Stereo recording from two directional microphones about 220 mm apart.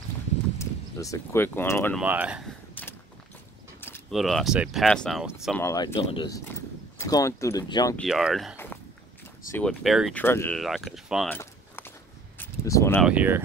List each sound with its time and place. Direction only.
0.6 s speech: 15° left (ahead or behind)
2.0 s speech: 5° right (ahead or behind)
2.7 s a sound: 10° left (ahead or behind)
4.1 s speech: centre (ahead or behind)
5.6 s speech: 10° left (ahead or behind)
5.9 s speech: 25° left (ahead or behind)
8.0 s speech: centre (ahead or behind)
10.2 s speech: 10° left (ahead or behind)
10.6 s speech: centre (ahead or behind)
11.3 s a sound: 10° left (ahead or behind)
13.0 s speech: 5° right (ahead or behind)